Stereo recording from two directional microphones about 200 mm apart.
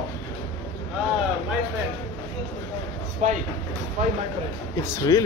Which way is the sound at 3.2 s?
35° right (ahead or behind).